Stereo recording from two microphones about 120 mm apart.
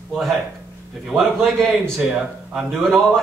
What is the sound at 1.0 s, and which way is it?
A man's voice, centre (ahead or behind).